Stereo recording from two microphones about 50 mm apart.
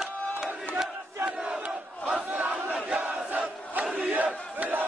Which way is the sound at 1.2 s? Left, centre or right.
Centre.